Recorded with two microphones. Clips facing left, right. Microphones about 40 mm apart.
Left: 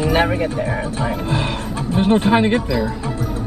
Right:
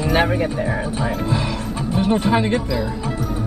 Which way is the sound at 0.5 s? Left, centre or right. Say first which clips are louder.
Left 1 dB; centre.